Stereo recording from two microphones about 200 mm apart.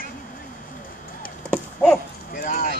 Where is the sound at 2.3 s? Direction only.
40° left (ahead or behind).